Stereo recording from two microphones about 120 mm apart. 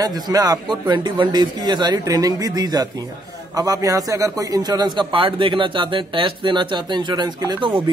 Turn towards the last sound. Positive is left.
turn(degrees=-35)  # may be behind; listen again after turning